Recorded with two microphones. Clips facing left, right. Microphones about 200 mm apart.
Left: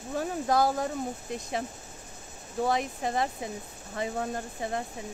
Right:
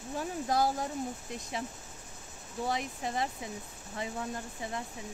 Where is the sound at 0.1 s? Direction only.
55° left (ahead or behind).